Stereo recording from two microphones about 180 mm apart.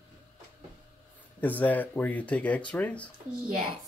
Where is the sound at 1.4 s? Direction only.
10° left (ahead or behind).